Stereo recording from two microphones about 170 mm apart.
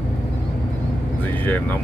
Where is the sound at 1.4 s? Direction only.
10° left (ahead or behind).